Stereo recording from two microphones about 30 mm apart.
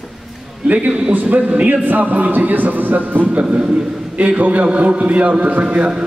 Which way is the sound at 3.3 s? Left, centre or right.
Right.